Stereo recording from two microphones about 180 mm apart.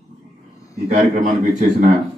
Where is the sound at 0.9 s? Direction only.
40° right (ahead or behind).